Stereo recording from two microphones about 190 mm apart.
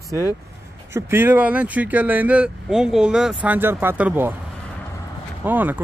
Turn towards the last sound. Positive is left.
turn(degrees=-10)  # may be behind; listen again after turning